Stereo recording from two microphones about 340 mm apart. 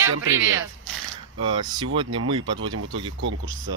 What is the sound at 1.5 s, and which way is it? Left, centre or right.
Speech, centre.